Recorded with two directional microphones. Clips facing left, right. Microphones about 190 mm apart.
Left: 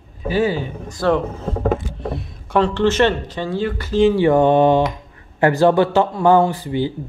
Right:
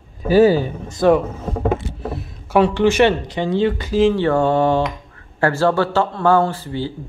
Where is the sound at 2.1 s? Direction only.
Centre (ahead or behind); by 3.9 s 20° right (ahead or behind).